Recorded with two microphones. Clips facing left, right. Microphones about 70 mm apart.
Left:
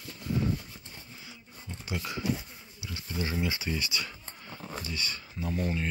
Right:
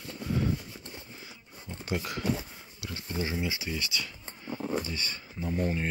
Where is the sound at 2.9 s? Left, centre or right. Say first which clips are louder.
Right 2 dB; right.